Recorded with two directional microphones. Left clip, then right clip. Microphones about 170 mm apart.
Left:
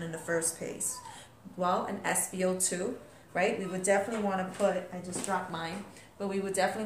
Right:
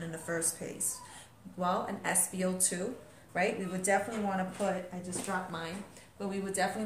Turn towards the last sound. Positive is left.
turn(degrees=20)  # may be behind; listen again after turning